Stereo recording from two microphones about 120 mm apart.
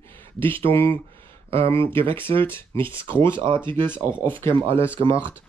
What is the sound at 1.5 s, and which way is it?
Speech, 50° right (ahead or behind).